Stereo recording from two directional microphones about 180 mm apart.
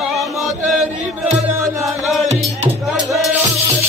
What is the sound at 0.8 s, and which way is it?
Chant, 40° right (ahead or behind).